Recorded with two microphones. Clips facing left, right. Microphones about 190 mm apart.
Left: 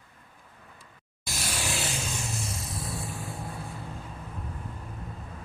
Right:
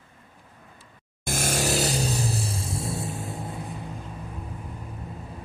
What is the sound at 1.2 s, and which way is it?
Vehicle, 50° right (ahead or behind).